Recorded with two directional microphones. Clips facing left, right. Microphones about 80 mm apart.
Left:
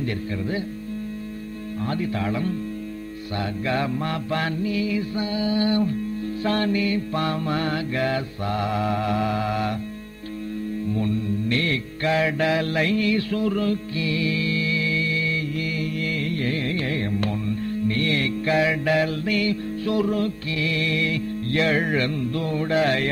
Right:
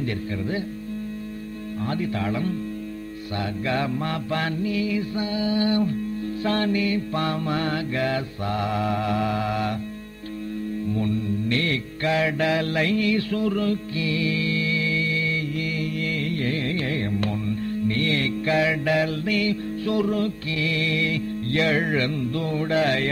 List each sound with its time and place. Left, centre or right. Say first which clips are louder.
0.0 s music: even; left
3.3 s music: left 1 dB; left
11.4 s music: even; left
16.8 s music: even; left
17.8 s music: left 1 dB; left
18.9 s music: left 1 dB; left